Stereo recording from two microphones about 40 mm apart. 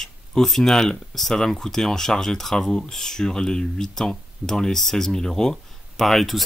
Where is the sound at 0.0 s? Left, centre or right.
Centre.